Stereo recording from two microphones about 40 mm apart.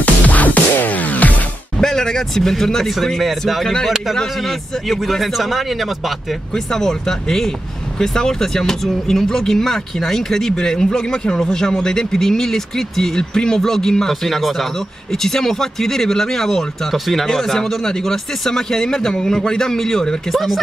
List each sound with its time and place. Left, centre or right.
0.0 s music: left
1.8 s a man's voice: centre
6.5 s speech: centre
20.2 s a man's voice: centre